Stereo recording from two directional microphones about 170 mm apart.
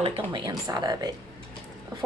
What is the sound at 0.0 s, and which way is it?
A woman's voice, 30° right (ahead or behind).